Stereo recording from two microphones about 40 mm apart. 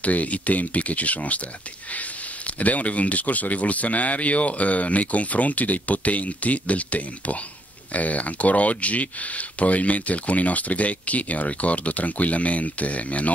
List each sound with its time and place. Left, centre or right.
0.0 s speech: left